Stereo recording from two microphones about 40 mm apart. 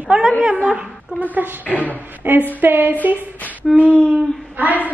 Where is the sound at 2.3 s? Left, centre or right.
Right.